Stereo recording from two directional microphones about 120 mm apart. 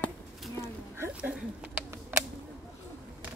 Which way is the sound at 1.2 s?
10° right (ahead or behind).